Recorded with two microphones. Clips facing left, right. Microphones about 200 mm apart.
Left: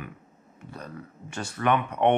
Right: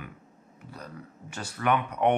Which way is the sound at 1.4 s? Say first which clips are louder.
Left 2 dB; 25° left (ahead or behind).